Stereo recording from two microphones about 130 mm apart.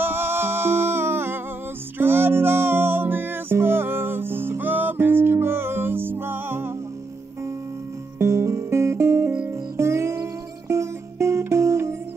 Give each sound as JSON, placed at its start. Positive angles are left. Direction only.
{"t": 0.0, "sound": "music", "side_deg": -15}
{"t": 8.2, "sound": "music", "side_deg": -20}